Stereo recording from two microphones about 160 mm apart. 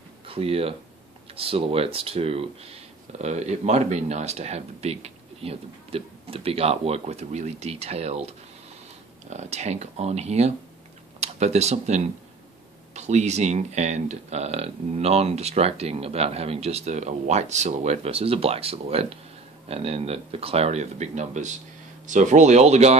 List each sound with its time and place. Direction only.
0.3 s speech: 35° right (ahead or behind)